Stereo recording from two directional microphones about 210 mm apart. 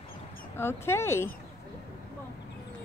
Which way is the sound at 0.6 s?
10° left (ahead or behind).